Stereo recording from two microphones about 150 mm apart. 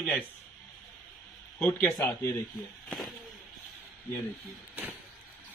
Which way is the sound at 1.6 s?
10° left (ahead or behind).